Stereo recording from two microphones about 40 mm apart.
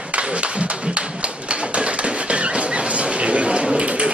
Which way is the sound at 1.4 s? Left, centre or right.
Right.